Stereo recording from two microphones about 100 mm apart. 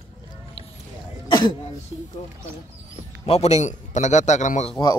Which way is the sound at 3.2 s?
90° left.